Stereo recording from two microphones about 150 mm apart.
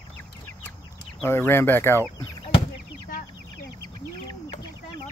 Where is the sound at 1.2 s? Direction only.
15° left (ahead or behind).